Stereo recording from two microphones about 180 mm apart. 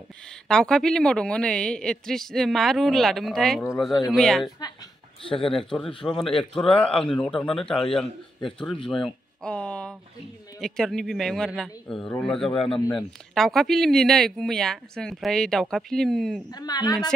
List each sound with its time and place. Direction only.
0.5 s speech: 5° left (ahead or behind)
16.4 s a woman's voice: 20° left (ahead or behind)